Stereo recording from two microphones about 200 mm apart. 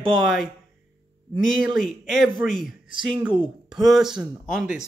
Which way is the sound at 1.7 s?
Centre (ahead or behind).